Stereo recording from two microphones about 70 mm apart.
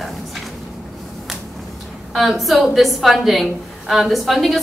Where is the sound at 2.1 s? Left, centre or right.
Centre.